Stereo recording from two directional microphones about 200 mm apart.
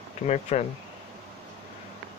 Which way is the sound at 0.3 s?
35° left (ahead or behind).